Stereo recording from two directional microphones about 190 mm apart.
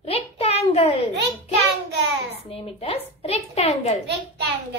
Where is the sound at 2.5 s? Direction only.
30° left (ahead or behind).